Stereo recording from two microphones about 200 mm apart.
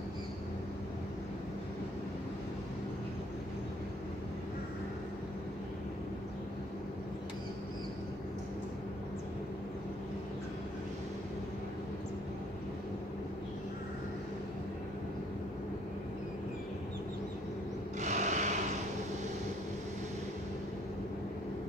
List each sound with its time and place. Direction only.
18.0 s rub: 35° right (ahead or behind)